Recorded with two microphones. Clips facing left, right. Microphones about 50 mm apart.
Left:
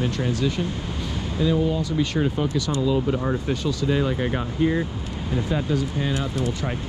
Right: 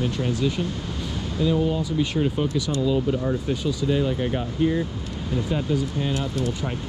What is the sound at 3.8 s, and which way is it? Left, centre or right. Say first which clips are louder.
Speech: even; centre.